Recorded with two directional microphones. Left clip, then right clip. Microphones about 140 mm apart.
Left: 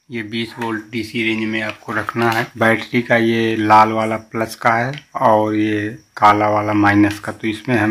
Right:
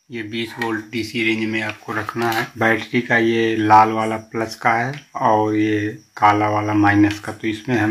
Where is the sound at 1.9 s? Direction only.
35° left (ahead or behind).